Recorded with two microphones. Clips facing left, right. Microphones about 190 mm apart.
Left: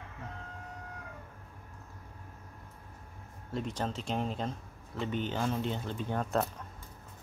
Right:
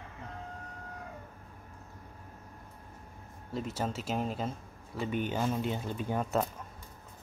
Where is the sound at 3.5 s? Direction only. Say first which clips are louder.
Even; 5° right (ahead or behind).